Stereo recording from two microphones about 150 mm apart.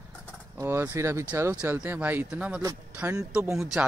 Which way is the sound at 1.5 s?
5° right (ahead or behind).